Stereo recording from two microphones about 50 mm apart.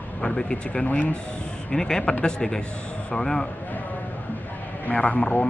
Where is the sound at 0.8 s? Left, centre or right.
Left.